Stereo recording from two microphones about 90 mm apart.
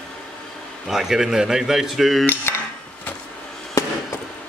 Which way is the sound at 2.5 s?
20° left (ahead or behind).